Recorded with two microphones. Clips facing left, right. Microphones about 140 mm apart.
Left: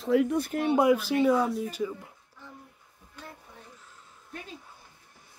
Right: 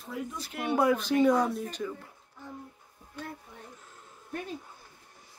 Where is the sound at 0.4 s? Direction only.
45° left (ahead or behind).